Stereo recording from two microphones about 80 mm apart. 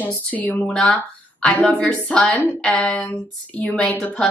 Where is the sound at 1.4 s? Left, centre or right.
Centre.